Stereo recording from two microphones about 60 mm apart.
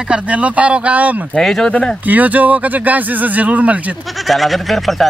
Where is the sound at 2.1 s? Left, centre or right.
Right.